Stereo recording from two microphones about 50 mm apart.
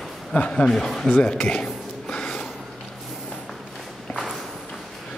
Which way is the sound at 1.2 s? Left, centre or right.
Left.